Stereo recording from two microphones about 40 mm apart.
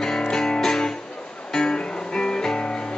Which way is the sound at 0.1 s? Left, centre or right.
Centre.